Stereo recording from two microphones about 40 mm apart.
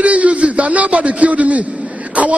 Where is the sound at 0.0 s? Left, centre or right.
Right.